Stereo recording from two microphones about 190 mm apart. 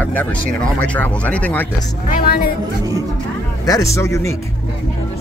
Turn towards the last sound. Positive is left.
turn(degrees=15)  # may be behind; listen again after turning